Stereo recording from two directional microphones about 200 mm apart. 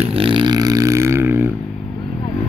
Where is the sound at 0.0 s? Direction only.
30° right (ahead or behind); by 1.4 s 10° right (ahead or behind).